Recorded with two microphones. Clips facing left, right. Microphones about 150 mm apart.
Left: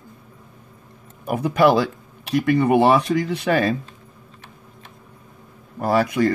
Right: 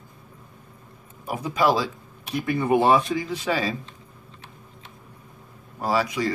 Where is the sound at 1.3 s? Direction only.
60° left (ahead or behind).